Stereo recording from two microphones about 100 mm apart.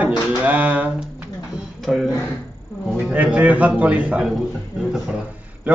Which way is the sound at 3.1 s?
15° right (ahead or behind).